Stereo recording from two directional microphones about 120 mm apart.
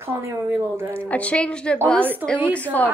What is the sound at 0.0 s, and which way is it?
Speech, 25° right (ahead or behind).